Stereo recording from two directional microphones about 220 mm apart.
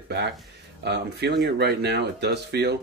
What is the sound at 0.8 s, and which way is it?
Speech, 50° right (ahead or behind).